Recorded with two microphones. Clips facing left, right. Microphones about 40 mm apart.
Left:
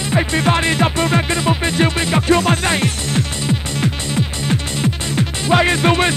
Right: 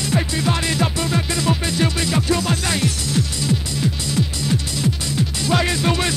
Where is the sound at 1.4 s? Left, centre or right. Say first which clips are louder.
Left 4 dB; left.